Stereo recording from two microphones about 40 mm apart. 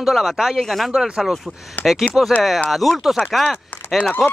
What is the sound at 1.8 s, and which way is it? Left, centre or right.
Speech, left.